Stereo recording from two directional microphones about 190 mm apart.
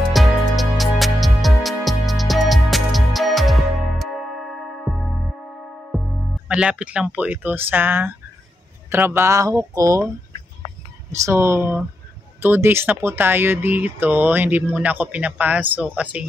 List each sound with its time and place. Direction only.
0.1 s music: centre (ahead or behind)
5.9 s speech: 5° left (ahead or behind); by 10.0 s 15° right (ahead or behind)
11.1 s speech: 15° right (ahead or behind)